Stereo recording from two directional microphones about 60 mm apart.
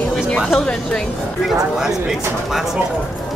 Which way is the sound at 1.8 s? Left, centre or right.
Centre.